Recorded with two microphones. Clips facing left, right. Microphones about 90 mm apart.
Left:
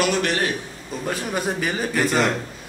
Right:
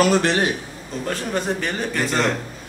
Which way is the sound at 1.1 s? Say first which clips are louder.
Right 1 dB; 5° left (ahead or behind).